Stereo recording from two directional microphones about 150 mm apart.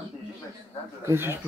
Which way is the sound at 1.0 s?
15° right (ahead or behind).